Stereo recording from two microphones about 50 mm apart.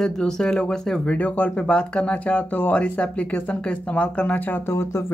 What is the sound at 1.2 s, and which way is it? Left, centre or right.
Speech, left.